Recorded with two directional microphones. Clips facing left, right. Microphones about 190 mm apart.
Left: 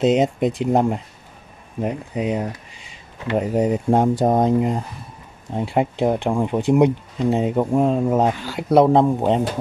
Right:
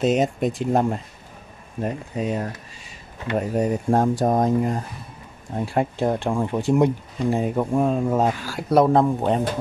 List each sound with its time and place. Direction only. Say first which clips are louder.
0.0 s speech: left 3 dB; 20° left (ahead or behind)